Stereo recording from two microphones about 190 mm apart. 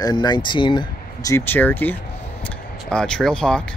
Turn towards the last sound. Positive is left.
turn(degrees=5)  # may be behind; listen again after turning